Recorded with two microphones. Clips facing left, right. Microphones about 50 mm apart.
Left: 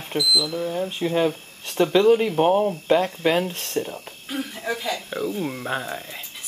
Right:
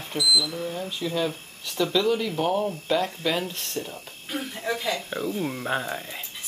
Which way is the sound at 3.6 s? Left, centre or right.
Left.